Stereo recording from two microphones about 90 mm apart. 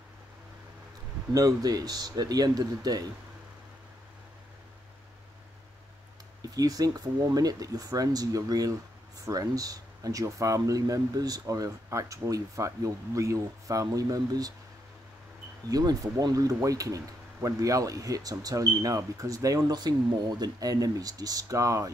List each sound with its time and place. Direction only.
1.3 s speech: 40° right (ahead or behind)
6.5 s speech: 40° right (ahead or behind)
15.7 s speech: 45° right (ahead or behind)